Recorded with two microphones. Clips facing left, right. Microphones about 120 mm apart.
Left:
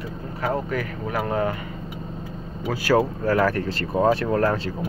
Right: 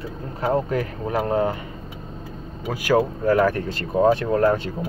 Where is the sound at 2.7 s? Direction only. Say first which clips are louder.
Even; 20° right (ahead or behind).